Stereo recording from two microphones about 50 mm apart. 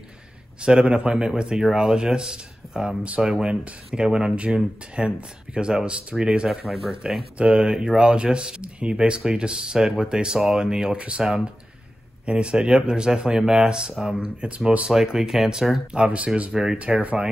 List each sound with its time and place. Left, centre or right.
0.6 s speech: centre
3.4 s speech: right; by 7.0 s centre
7.3 s speech: right
11.2 s speech: centre
15.1 s speech: centre
15.9 s speech: right